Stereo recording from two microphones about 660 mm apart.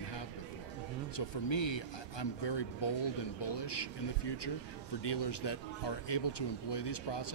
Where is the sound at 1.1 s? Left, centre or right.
Left.